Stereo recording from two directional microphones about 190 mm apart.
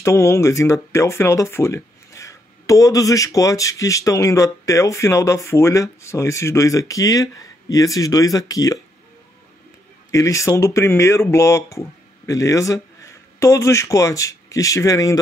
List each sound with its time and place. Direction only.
0.0 s speech: 15° left (ahead or behind)
10.1 s speech: 15° left (ahead or behind)